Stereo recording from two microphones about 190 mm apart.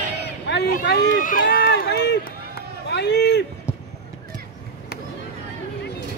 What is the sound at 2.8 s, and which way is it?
Speech, 65° left (ahead or behind).